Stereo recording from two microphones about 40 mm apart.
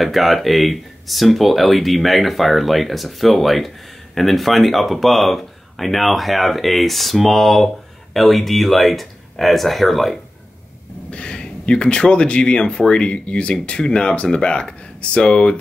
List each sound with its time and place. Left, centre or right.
0.0 s speech: centre
11.1 s speech: left